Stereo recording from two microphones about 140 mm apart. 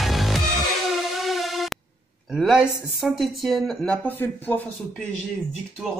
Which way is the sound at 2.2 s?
Centre (ahead or behind).